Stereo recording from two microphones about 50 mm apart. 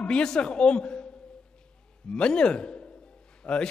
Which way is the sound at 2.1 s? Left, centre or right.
Centre.